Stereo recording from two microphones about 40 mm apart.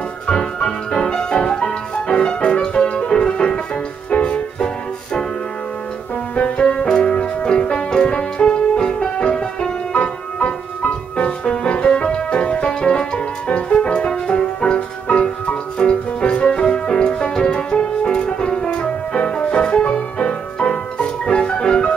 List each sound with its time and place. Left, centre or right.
0.3 s music: left
6.3 s music: left
21.5 s music: centre